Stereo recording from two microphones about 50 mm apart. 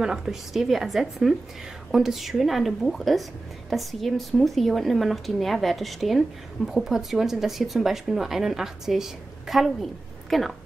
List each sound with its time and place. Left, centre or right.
0.0 s speech: centre